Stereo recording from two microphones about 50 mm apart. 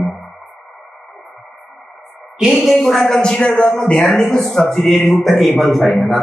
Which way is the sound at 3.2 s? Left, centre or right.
Centre.